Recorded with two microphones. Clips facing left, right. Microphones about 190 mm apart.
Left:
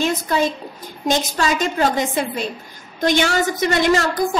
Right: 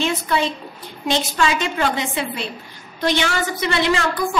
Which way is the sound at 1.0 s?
45° left (ahead or behind).